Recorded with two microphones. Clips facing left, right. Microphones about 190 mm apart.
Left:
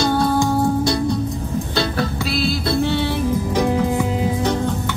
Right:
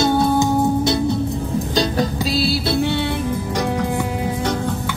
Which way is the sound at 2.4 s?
35° right (ahead or behind).